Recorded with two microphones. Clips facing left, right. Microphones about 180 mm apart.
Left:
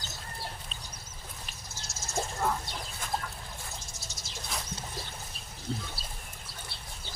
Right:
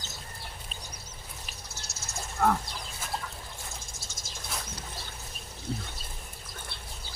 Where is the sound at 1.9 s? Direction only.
65° right (ahead or behind).